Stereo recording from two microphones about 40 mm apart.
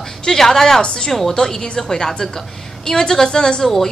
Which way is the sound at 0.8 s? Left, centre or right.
Left.